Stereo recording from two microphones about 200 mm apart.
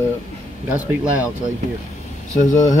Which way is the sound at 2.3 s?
40° left (ahead or behind).